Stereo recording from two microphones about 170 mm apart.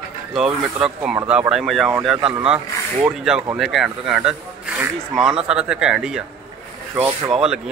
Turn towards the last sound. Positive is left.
turn(degrees=-5)  # may be behind; listen again after turning